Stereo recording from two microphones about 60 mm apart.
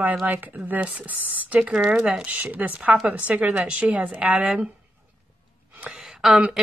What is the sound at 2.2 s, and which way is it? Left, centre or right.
Speech, right.